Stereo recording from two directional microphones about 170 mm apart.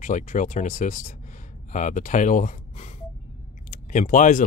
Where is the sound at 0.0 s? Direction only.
50° left (ahead or behind).